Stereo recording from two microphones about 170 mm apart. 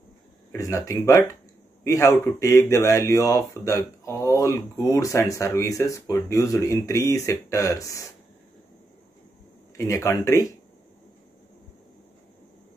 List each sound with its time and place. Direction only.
0.5 s speech: 20° left (ahead or behind)
9.8 s speech: 15° left (ahead or behind)